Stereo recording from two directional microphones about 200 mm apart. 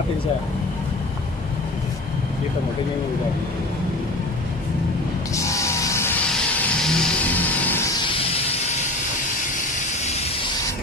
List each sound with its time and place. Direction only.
5.3 s music: 15° left (ahead or behind)
8.0 s hiss: 25° left (ahead or behind)